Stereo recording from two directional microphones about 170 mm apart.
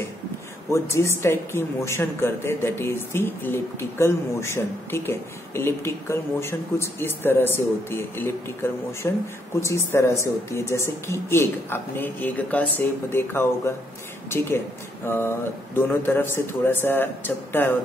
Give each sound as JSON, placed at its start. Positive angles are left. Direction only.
{"t": 0.7, "sound": "a man's voice", "side_deg": 15}
{"t": 15.0, "sound": "a man's voice", "side_deg": 15}